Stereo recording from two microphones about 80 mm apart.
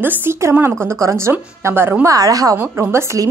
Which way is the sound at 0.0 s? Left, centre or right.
Right.